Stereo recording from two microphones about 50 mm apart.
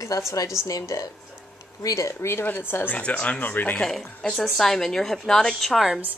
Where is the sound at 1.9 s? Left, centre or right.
Left.